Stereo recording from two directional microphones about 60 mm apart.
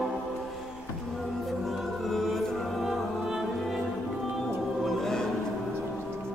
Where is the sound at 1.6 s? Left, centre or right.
Centre.